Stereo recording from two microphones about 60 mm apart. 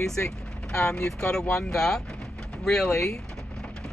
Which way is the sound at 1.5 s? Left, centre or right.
Centre.